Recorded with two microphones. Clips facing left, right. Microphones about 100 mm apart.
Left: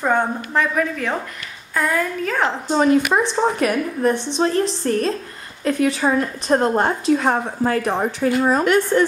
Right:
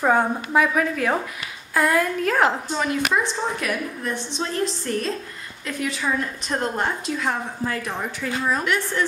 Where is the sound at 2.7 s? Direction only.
40° left (ahead or behind).